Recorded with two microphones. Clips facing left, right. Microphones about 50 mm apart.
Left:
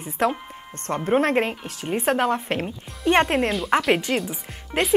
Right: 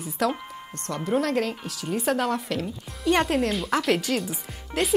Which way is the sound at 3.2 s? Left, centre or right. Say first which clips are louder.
Left 2 dB; left.